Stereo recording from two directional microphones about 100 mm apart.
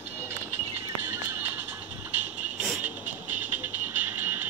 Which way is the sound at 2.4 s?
15° right (ahead or behind).